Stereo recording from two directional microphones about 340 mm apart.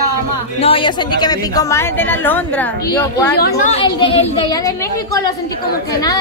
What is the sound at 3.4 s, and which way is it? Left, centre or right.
A woman's voice, left.